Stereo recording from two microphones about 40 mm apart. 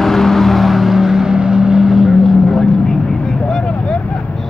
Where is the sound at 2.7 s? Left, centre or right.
Centre.